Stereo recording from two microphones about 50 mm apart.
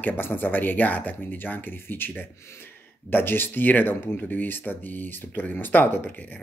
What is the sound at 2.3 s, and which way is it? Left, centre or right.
Speech, left.